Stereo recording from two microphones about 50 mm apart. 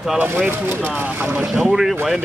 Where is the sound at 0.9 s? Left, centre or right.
Right.